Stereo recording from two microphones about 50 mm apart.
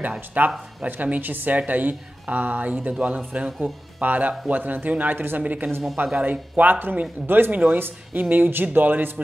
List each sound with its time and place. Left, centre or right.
0.3 s a man's voice: right